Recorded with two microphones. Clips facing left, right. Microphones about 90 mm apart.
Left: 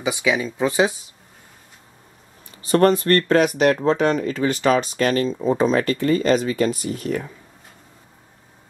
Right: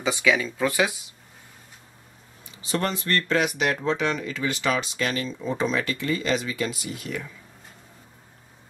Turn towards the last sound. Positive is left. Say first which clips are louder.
# left 8 dB
turn(degrees=40)  # may be behind; listen again after turning